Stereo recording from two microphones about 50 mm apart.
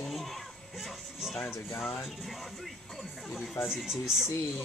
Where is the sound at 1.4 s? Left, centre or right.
Left.